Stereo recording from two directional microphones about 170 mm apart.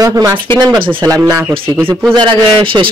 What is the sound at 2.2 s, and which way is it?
Speech, 30° right (ahead or behind).